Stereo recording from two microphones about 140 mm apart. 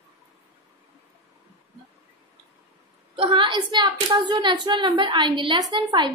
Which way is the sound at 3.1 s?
40° right (ahead or behind).